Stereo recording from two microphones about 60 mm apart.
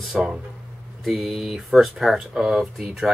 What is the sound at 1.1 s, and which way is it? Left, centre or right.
Speech, centre.